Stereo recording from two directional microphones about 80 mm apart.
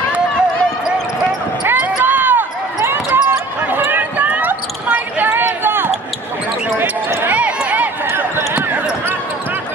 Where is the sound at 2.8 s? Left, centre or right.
Right.